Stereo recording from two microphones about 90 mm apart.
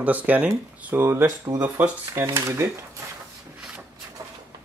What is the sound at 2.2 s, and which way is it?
Speech, 35° right (ahead or behind).